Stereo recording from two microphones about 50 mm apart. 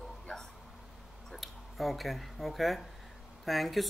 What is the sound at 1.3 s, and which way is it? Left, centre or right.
Speech, centre.